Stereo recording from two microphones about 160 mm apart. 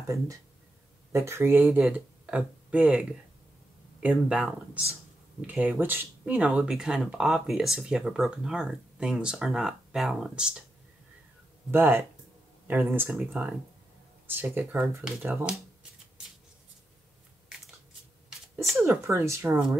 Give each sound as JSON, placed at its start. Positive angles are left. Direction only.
{"t": 1.1, "sound": "speech", "side_deg": -15}
{"t": 5.5, "sound": "speech", "side_deg": -10}
{"t": 11.7, "sound": "speech", "side_deg": -15}
{"t": 14.2, "sound": "speech", "side_deg": -15}
{"t": 18.9, "sound": "speech", "side_deg": -15}